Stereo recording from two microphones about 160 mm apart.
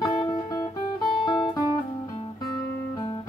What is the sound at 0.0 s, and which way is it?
Music, 25° left (ahead or behind).